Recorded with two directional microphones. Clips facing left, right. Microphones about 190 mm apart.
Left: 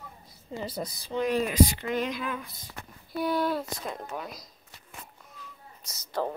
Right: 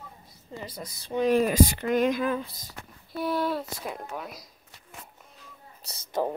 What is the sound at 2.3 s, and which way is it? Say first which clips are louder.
Speech: right 6 dB; 35° right (ahead or behind).